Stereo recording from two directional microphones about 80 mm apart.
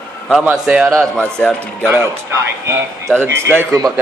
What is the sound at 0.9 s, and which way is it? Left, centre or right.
Speech, centre.